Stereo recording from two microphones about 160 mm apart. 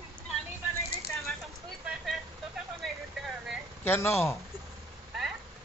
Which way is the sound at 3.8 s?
15° left (ahead or behind).